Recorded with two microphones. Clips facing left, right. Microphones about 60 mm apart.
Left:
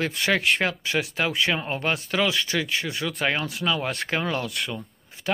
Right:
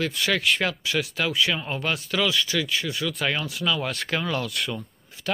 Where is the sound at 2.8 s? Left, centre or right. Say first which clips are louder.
Even; left.